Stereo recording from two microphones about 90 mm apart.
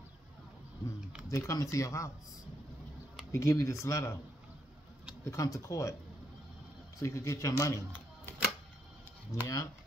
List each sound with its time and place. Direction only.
1.3 s a man's voice: 35° left (ahead or behind)
3.3 s a man's voice: 35° left (ahead or behind)
5.2 s a man's voice: 35° left (ahead or behind)
7.0 s a man's voice: 35° left (ahead or behind)
9.3 s a man's voice: 35° left (ahead or behind)